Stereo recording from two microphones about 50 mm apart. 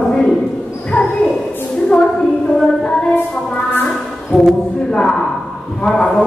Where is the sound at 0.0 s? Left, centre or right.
Centre.